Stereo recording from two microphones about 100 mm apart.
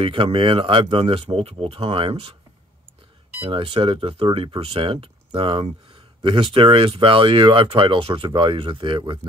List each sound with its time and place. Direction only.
0.0 s speech: 60° right (ahead or behind)
3.4 s speech: 60° right (ahead or behind)